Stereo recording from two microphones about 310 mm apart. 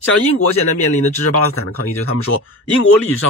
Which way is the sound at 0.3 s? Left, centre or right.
Left.